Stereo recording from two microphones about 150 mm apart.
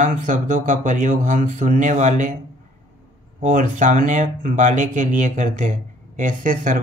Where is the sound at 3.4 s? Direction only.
60° right (ahead or behind).